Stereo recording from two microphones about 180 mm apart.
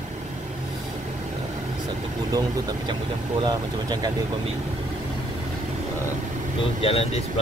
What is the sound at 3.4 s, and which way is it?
Speech, 20° right (ahead or behind).